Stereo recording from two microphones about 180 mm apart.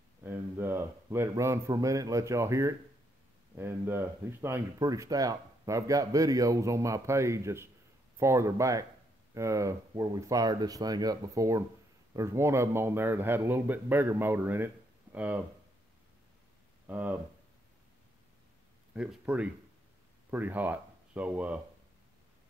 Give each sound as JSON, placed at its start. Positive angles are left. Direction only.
{"t": 0.2, "sound": "speech", "side_deg": -10}
{"t": 16.8, "sound": "speech", "side_deg": -10}
{"t": 18.9, "sound": "speech", "side_deg": -5}